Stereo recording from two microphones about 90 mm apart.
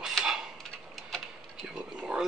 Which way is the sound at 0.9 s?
Centre (ahead or behind).